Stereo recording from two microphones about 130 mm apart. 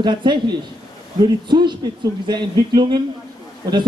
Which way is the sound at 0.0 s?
35° right (ahead or behind).